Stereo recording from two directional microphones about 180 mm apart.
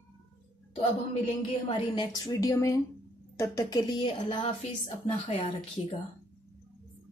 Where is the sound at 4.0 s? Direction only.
25° left (ahead or behind).